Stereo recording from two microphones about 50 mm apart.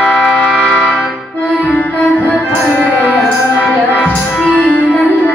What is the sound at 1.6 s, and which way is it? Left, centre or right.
Music, left.